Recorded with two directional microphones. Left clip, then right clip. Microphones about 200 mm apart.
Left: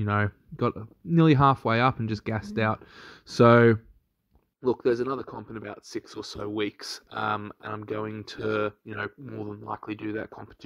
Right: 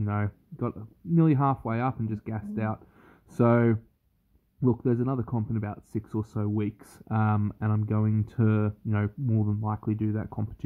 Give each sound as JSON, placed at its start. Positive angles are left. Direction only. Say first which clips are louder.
{"t": 0.0, "sound": "speech", "louder": "left 6 dB", "side_deg": 20}